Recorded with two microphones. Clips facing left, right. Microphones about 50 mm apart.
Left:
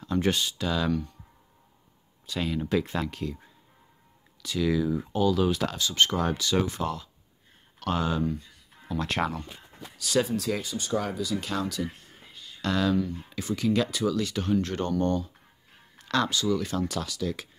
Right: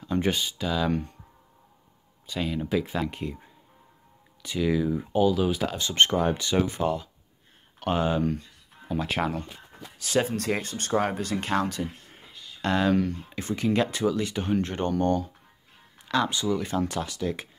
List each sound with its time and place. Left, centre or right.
0.0 s speech: centre
2.2 s speech: centre
3.1 s speech: right
4.4 s speech: right
5.8 s speech: right
8.2 s speech: right
8.9 s speech: centre
9.9 s speech: right
10.5 s speech: right
12.9 s speech: right
13.3 s speech: right